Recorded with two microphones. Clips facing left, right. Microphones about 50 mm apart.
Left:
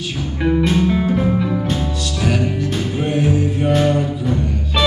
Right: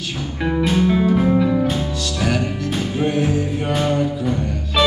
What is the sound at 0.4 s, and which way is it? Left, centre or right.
Music, centre.